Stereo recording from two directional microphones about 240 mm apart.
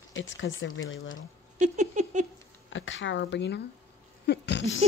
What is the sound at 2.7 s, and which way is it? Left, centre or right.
Speech, left.